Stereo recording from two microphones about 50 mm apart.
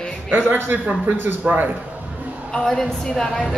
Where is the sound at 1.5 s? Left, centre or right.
Right.